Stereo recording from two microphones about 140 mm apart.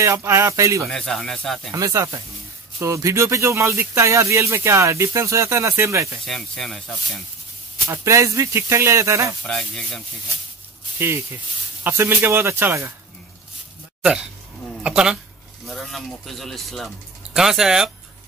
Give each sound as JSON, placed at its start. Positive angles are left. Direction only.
{"t": 0.0, "sound": "speech", "side_deg": -20}
{"t": 0.8, "sound": "a man's voice", "side_deg": 5}
{"t": 1.7, "sound": "speech", "side_deg": -25}
{"t": 6.2, "sound": "a man's voice", "side_deg": 5}
{"t": 7.9, "sound": "speech", "side_deg": -20}
{"t": 9.4, "sound": "a man's voice", "side_deg": 5}
{"t": 11.0, "sound": "speech", "side_deg": -15}
{"t": 14.8, "sound": "a man's voice", "side_deg": -5}